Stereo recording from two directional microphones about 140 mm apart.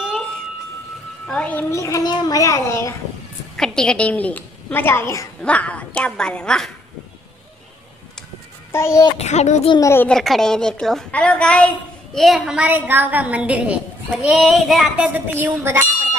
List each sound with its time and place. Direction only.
0.0 s a sound: centre (ahead or behind)
1.2 s a child's voice: 5° left (ahead or behind)
3.5 s a woman's voice: 5° left (ahead or behind); by 5.3 s 20° left (ahead or behind)
5.4 s a woman's voice: 10° left (ahead or behind)
8.7 s a child's voice: 20° left (ahead or behind)
9.2 s speech: 55° left (ahead or behind)
9.8 s a child's voice: 20° left (ahead or behind)
10.0 s a woman's voice: centre (ahead or behind)
15.1 s a woman's voice: 15° right (ahead or behind)